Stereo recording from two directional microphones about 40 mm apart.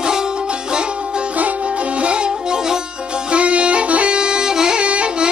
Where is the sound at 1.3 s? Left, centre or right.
Right; by 3.2 s centre.